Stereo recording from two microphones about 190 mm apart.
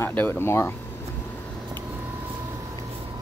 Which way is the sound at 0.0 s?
10° left (ahead or behind).